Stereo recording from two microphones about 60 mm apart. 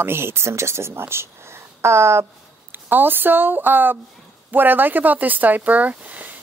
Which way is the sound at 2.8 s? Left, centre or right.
Right.